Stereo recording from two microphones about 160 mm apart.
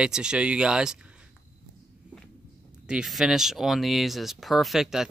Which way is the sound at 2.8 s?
5° right (ahead or behind).